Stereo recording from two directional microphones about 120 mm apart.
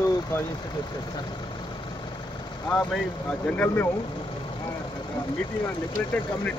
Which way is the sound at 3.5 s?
15° left (ahead or behind).